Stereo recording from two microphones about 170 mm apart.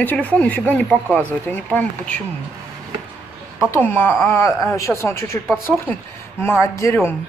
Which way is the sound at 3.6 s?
10° left (ahead or behind).